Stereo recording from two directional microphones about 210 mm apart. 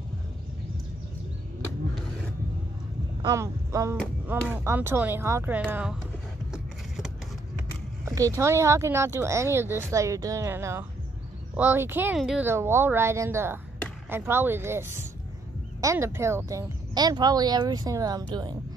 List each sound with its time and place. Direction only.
3.2 s speech: 15° right (ahead or behind)
8.0 s a sound: 15° right (ahead or behind)
8.4 s a woman's voice: 15° right (ahead or behind)